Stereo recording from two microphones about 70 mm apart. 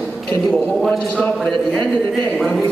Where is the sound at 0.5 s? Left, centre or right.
Centre.